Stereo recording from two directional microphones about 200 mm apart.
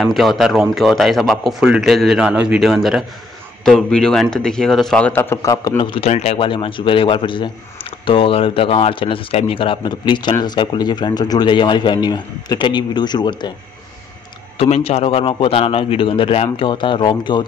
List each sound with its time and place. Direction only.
0.0 s a man's voice: centre (ahead or behind); by 13.5 s 20° left (ahead or behind)
14.6 s speech: 30° left (ahead or behind)